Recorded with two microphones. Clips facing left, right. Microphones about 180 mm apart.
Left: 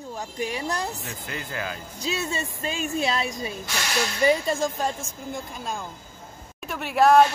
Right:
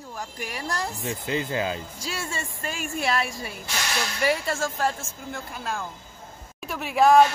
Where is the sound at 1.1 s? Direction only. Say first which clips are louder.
Right 7 dB; 20° right (ahead or behind).